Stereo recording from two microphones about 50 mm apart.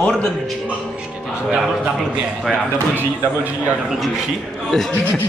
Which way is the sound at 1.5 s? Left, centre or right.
Centre.